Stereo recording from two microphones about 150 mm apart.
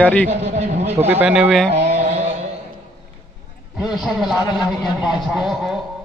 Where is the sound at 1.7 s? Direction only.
45° right (ahead or behind).